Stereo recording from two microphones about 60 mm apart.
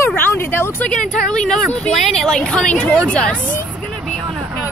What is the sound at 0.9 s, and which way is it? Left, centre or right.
Speech, centre.